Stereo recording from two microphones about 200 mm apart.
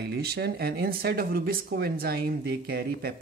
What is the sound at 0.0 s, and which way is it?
Speech, 55° right (ahead or behind).